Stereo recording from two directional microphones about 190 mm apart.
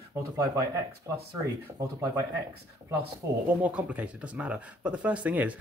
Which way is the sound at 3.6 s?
5° right (ahead or behind).